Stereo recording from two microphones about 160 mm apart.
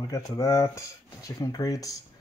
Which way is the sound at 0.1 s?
20° left (ahead or behind).